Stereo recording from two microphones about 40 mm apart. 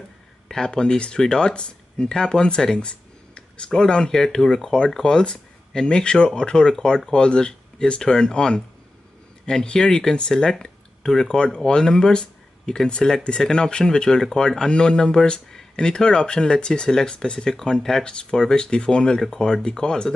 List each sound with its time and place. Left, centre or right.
0.5 s speech: centre
0.9 s speech: left
1.2 s speech: centre